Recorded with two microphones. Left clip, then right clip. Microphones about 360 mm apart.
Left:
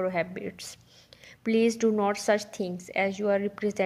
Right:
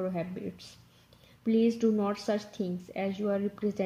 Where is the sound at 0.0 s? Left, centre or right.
Centre.